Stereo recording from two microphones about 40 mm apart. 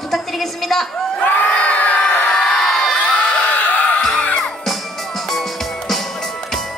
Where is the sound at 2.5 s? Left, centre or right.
Centre.